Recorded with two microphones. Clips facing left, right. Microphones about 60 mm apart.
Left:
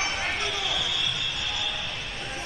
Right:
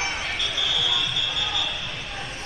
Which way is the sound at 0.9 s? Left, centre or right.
Right.